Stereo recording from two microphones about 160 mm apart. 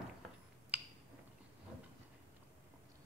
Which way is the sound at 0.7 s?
10° right (ahead or behind).